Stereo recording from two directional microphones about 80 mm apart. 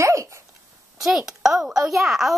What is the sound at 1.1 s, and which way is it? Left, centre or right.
Speech, centre.